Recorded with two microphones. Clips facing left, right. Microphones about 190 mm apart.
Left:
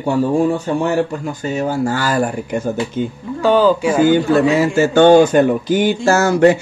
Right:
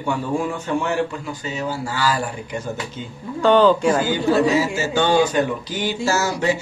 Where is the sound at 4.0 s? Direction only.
55° left (ahead or behind).